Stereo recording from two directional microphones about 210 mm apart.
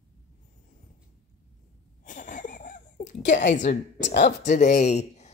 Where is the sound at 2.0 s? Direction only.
40° left (ahead or behind).